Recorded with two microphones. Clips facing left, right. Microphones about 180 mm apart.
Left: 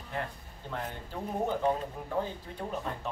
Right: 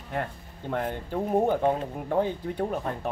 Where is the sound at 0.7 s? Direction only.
55° right (ahead or behind).